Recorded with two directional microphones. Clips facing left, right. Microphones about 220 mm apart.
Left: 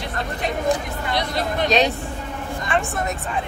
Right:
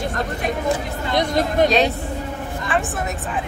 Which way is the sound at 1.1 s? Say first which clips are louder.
Right 5 dB; 45° right (ahead or behind).